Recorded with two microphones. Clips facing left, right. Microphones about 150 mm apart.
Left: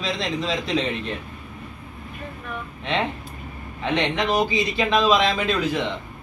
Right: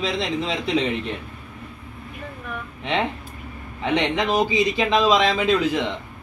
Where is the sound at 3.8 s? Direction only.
15° right (ahead or behind).